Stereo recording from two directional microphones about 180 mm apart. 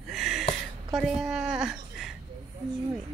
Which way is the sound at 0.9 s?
Centre (ahead or behind).